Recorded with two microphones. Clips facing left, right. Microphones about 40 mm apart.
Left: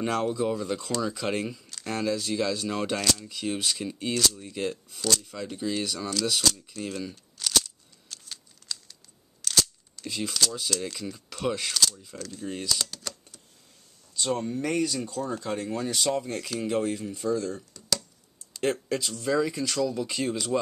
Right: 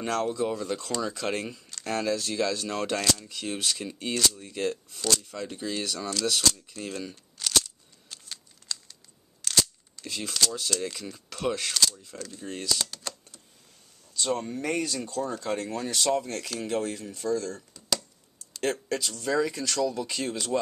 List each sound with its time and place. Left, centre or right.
0.0 s speech: centre
14.1 s speech: centre
17.3 s speech: centre
17.7 s a sound: centre
18.6 s speech: centre